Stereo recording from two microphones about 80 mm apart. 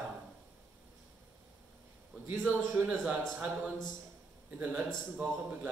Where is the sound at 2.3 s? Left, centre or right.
Centre.